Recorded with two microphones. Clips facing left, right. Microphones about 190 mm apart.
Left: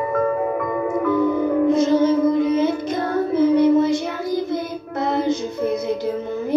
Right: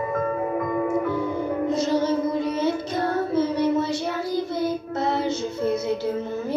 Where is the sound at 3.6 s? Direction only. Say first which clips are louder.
Left 7 dB; 15° left (ahead or behind).